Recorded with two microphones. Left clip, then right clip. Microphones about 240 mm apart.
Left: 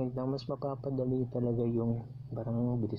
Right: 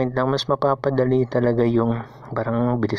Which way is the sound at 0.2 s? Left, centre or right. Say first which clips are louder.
Right 16 dB; right.